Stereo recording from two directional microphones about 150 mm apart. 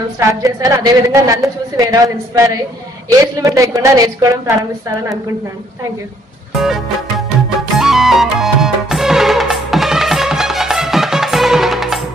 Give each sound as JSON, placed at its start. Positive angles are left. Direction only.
{"t": 0.4, "sound": "a woman's voice", "side_deg": -20}
{"t": 6.5, "sound": "music", "side_deg": 0}